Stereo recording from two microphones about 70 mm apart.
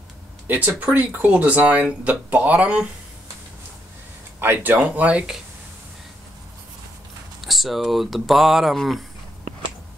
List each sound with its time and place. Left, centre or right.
0.5 s speech: centre
4.4 s speech: right
7.4 s speech: centre